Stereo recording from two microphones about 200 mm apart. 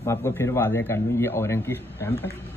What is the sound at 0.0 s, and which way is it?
A man's voice, 15° left (ahead or behind).